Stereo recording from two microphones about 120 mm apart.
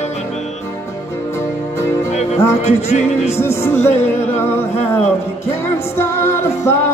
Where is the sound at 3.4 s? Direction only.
20° left (ahead or behind).